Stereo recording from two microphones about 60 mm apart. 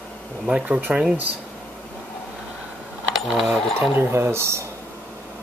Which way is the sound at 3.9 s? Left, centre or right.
Right.